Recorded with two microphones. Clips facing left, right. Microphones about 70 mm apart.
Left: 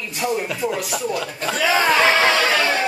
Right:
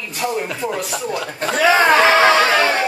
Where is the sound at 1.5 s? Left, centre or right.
Right.